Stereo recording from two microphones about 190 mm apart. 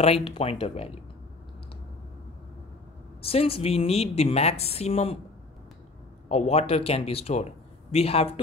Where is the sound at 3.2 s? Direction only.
30° left (ahead or behind).